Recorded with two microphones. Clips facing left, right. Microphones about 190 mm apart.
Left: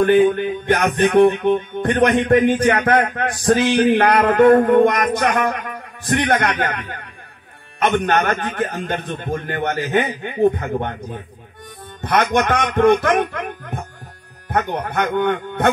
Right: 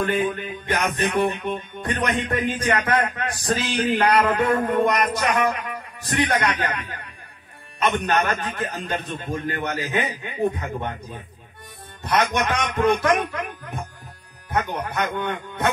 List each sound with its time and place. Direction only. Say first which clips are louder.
0.0 s music: left 10 dB; 60° left (ahead or behind)